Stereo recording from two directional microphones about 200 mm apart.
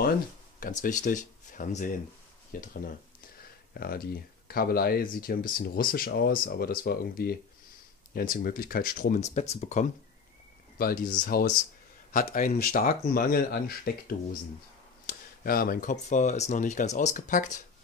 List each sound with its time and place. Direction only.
0.6 s speech: 40° left (ahead or behind)